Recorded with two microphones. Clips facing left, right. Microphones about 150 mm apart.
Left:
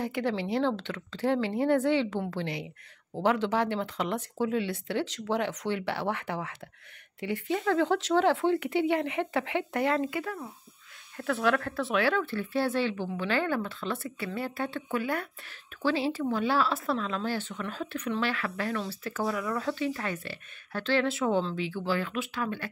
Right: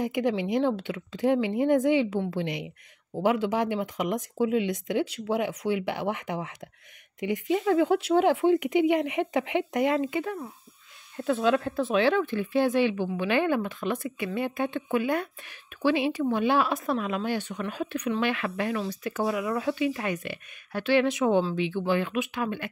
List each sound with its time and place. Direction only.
0.0 s speech: 15° right (ahead or behind)